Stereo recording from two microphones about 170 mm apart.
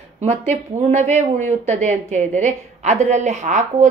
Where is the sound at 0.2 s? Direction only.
40° right (ahead or behind).